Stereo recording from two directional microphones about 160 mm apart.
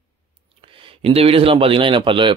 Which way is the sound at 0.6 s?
35° right (ahead or behind).